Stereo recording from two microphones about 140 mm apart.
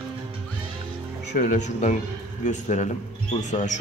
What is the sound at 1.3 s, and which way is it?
Speech, 60° left (ahead or behind).